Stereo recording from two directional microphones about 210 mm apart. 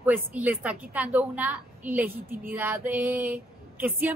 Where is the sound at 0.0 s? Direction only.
10° right (ahead or behind).